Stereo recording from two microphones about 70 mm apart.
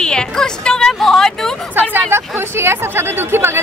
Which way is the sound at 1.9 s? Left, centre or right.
Right.